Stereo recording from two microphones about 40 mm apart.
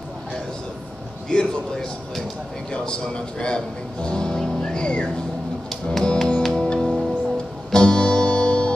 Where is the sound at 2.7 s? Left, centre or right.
Left.